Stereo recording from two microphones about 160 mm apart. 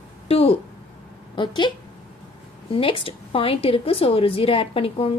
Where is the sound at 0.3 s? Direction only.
40° left (ahead or behind).